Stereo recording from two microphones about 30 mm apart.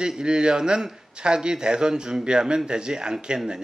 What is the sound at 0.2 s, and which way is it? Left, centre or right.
Speech, right.